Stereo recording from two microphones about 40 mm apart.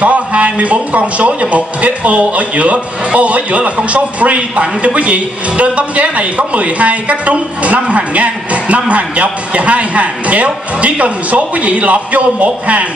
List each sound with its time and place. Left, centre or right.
0.0 s a man's voice: right